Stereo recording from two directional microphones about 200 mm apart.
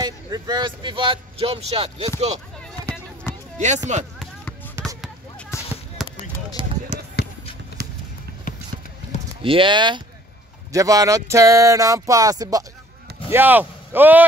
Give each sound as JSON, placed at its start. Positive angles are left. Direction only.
{"t": 0.0, "sound": "speech", "side_deg": -20}
{"t": 3.5, "sound": "speech", "side_deg": -35}
{"t": 4.8, "sound": "basketball bounce", "side_deg": -10}
{"t": 5.5, "sound": "fireworks", "side_deg": 15}
{"t": 6.0, "sound": "basketball bounce", "side_deg": 0}
{"t": 6.6, "sound": "basketball bounce", "side_deg": -25}
{"t": 9.4, "sound": "speech", "side_deg": -25}